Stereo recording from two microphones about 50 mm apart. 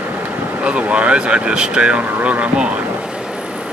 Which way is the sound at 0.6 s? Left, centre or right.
Right.